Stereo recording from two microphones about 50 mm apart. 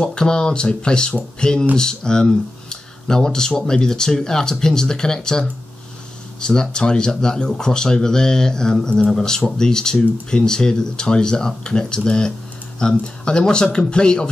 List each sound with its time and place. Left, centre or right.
0.0 s speech: centre